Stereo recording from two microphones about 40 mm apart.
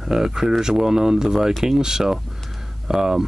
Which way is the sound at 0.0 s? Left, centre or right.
Centre.